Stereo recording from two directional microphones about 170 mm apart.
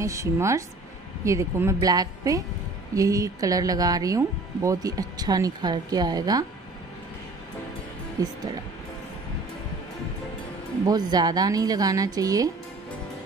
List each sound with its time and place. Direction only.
0.0 s speech: 15° right (ahead or behind)
10.9 s speech: 25° right (ahead or behind)